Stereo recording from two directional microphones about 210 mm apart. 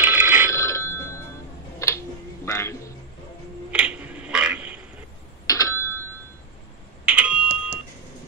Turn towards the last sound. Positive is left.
turn(degrees=-5)  # may be behind; listen again after turning